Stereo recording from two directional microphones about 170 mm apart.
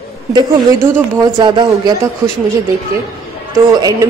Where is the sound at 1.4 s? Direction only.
25° right (ahead or behind).